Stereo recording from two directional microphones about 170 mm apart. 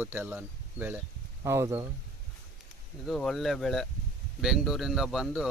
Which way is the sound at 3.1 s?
Centre (ahead or behind).